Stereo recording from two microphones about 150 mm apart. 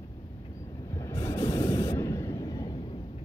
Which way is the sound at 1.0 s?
20° left (ahead or behind).